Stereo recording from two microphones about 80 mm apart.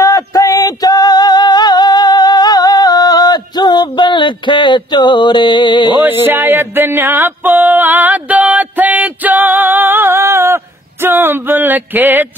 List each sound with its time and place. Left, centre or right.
0.0 s female singing: left
6.0 s music: right